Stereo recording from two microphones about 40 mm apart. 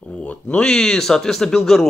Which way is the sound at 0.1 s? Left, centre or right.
Left.